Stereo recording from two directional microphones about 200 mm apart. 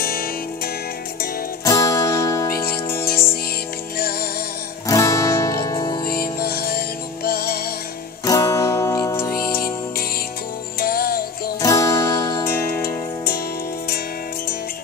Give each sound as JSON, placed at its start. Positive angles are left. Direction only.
{"t": 0.0, "sound": "music", "side_deg": 50}
{"t": 1.6, "sound": "music", "side_deg": 15}
{"t": 2.5, "sound": "music", "side_deg": 50}
{"t": 4.8, "sound": "music", "side_deg": 15}
{"t": 6.0, "sound": "music", "side_deg": 50}
{"t": 8.3, "sound": "music", "side_deg": 15}
{"t": 10.8, "sound": "music", "side_deg": 50}
{"t": 11.6, "sound": "music", "side_deg": 15}
{"t": 12.5, "sound": "music", "side_deg": 50}